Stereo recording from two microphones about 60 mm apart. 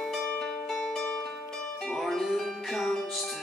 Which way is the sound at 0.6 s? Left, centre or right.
Centre.